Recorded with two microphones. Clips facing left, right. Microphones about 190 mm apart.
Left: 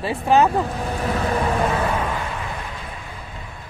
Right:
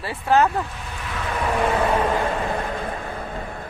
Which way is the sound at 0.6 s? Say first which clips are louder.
Left 8 dB; 40° left (ahead or behind).